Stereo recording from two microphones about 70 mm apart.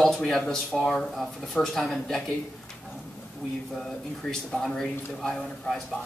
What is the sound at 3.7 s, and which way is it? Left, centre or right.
Speech, centre.